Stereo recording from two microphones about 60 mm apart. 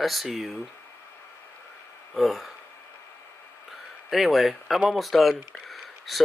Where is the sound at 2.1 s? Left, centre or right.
Centre.